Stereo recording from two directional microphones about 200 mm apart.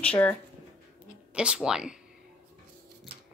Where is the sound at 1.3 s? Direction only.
5° right (ahead or behind).